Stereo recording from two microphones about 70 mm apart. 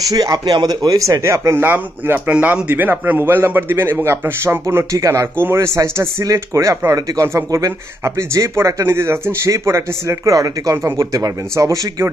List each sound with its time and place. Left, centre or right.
0.1 s a man's voice: right
4.9 s speech: right
5.4 s a man's voice: right
5.8 s speech: right